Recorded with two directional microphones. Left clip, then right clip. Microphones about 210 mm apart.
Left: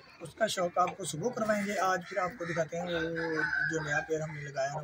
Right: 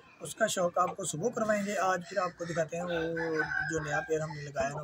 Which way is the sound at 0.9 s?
5° right (ahead or behind).